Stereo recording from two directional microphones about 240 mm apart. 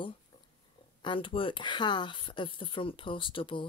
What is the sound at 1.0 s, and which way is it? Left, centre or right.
Speech, left.